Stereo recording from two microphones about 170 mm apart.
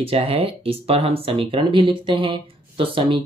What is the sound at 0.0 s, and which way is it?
Speech, 35° right (ahead or behind).